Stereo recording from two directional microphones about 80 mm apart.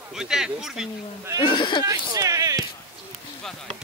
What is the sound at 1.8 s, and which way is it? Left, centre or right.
Speech, right.